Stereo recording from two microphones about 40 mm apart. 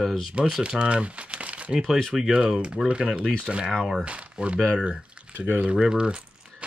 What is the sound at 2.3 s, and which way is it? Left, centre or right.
Speech, centre.